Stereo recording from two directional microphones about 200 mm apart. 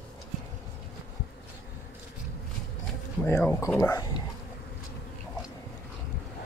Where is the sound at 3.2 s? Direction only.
15° left (ahead or behind).